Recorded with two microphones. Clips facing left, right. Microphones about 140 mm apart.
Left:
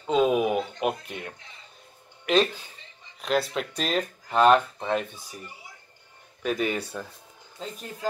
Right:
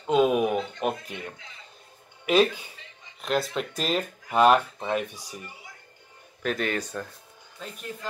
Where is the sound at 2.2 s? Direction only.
10° right (ahead or behind).